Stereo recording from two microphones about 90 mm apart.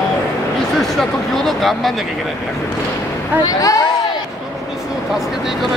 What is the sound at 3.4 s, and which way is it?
Speech, 40° left (ahead or behind).